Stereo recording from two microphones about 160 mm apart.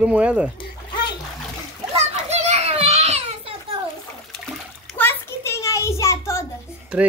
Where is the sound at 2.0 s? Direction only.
45° right (ahead or behind).